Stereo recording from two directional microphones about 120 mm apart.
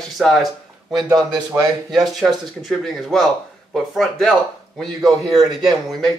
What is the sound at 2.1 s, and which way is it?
Speech, centre (ahead or behind).